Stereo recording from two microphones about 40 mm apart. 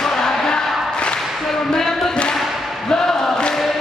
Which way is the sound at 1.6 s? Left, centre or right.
Centre.